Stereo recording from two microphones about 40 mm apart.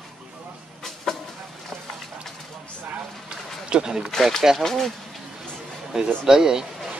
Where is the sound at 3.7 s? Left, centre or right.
Centre.